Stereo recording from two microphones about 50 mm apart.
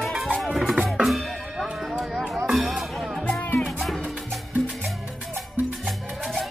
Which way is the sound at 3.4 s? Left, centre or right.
Left.